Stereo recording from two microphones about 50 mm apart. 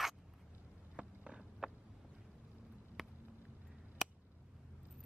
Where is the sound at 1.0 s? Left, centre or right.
Right.